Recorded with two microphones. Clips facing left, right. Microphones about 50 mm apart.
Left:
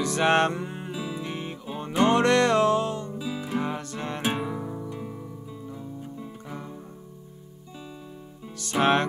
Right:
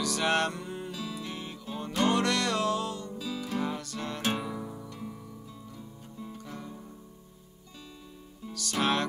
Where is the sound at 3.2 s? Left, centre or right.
Centre.